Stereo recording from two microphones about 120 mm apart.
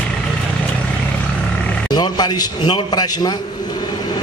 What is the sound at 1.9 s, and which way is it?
A man's voice, 35° left (ahead or behind).